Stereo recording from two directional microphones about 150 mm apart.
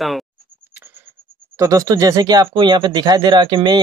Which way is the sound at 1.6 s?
20° right (ahead or behind).